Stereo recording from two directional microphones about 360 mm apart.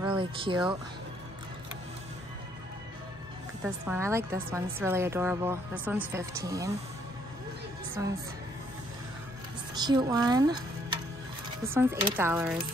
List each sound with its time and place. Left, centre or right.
0.0 s speech: centre
3.6 s a woman's voice: centre
8.0 s a woman's voice: centre
9.8 s a woman's voice: centre